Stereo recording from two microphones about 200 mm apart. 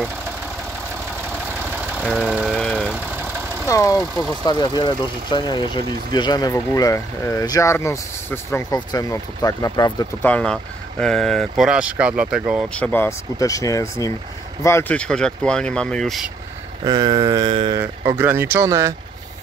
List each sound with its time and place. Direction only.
1.7 s vehicle: 10° right (ahead or behind)
3.6 s speech: 15° left (ahead or behind)
10.2 s speech: 5° left (ahead or behind)
16.8 s a sound: 20° right (ahead or behind)
17.7 s speech: 10° right (ahead or behind)